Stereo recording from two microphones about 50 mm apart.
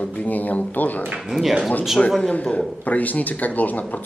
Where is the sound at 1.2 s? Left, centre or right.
Centre.